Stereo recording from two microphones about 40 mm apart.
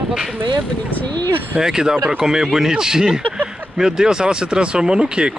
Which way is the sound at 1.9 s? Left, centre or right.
Right.